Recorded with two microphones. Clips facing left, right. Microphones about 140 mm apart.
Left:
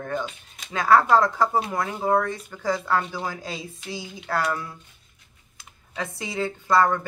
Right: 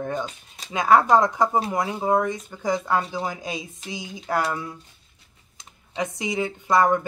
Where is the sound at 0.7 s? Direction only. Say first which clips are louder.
Right 1 dB; 20° right (ahead or behind).